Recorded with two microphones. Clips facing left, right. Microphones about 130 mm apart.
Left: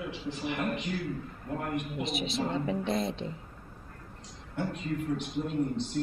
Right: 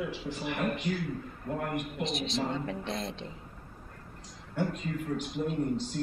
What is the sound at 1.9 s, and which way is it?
A woman's voice, 5° left (ahead or behind).